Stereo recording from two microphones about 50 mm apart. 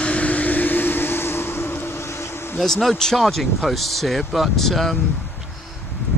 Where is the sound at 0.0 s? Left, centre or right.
Left.